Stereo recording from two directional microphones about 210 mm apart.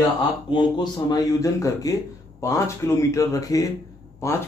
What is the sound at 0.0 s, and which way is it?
Speech, 20° left (ahead or behind).